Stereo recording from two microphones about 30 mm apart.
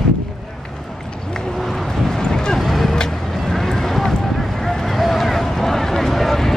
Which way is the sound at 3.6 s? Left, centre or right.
Centre.